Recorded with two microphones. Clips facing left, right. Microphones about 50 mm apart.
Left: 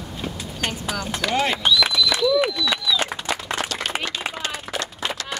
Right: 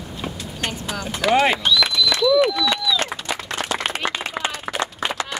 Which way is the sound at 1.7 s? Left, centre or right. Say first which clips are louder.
Right 1 dB; centre.